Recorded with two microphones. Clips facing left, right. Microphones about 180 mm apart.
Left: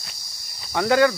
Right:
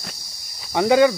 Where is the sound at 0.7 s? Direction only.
15° right (ahead or behind).